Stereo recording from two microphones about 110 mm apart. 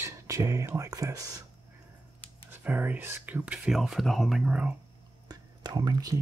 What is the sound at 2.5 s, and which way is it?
Speech, 15° right (ahead or behind).